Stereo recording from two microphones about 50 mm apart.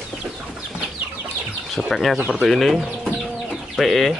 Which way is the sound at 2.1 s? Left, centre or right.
Right.